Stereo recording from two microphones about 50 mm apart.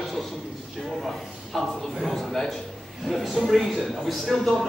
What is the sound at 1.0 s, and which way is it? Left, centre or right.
Speech, centre.